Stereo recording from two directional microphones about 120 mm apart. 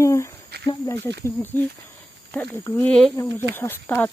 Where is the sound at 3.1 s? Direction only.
20° left (ahead or behind).